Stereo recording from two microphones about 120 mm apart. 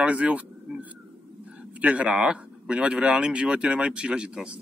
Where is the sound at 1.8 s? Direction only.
10° right (ahead or behind).